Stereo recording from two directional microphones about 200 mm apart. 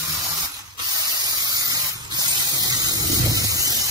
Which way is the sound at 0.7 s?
20° right (ahead or behind).